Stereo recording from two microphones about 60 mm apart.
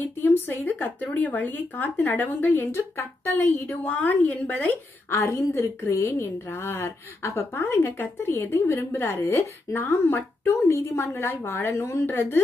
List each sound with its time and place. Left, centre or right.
0.0 s speech: left
5.1 s a woman's voice: left
11.7 s a woman's voice: left